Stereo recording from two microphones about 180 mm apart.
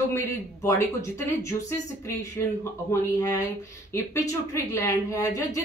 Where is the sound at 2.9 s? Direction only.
20° left (ahead or behind).